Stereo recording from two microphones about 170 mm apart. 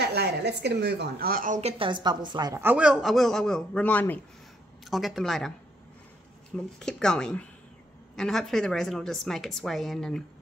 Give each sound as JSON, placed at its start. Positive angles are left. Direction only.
{"t": 0.0, "sound": "speech", "side_deg": -75}
{"t": 1.6, "sound": "a woman's voice", "side_deg": -35}
{"t": 2.6, "sound": "a woman's voice", "side_deg": -5}
{"t": 4.8, "sound": "a woman's voice", "side_deg": 0}
{"t": 6.8, "sound": "a woman's voice", "side_deg": 5}